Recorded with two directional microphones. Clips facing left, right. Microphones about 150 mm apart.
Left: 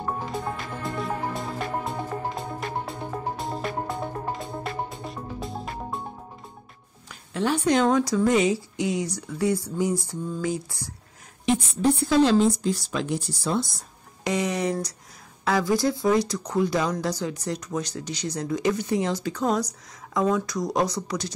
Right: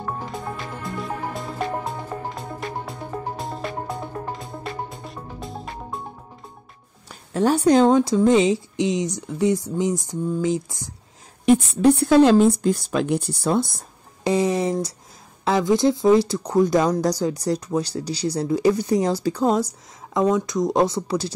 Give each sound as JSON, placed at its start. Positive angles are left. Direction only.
{"t": 2.9, "sound": "music", "side_deg": 0}
{"t": 7.1, "sound": "speech", "side_deg": -40}
{"t": 11.4, "sound": "a woman's voice", "side_deg": -60}
{"t": 14.2, "sound": "music", "side_deg": -30}
{"t": 15.4, "sound": "speech", "side_deg": -20}
{"t": 20.2, "sound": "speech", "side_deg": -20}